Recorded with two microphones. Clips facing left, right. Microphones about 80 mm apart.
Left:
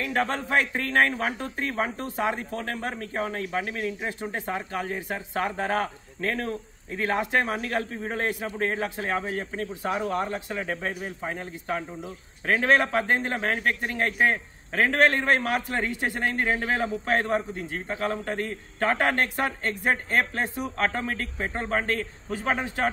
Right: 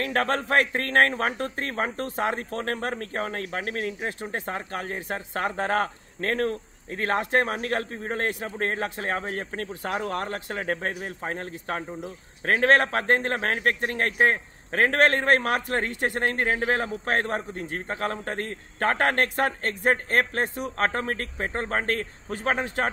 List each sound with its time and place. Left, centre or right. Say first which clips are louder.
0.0 s a man's voice: right 2 dB; right